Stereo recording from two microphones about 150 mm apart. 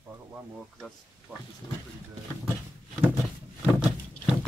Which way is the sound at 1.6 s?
25° left (ahead or behind).